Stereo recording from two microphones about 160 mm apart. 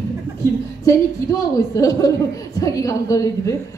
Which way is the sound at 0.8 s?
20° left (ahead or behind).